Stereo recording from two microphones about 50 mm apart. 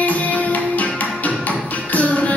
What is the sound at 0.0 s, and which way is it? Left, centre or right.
Music, left.